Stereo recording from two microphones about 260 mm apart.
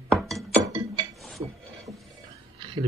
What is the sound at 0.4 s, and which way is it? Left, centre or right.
Music, centre.